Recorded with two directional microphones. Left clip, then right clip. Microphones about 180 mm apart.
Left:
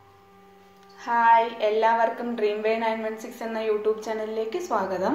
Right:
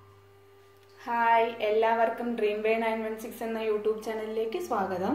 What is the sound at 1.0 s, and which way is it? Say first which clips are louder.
A woman's voice: left 5 dB; 15° left (ahead or behind).